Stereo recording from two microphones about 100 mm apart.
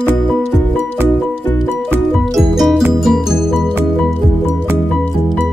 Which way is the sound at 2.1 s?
Centre (ahead or behind).